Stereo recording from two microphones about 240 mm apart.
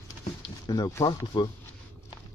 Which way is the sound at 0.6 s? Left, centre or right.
Centre.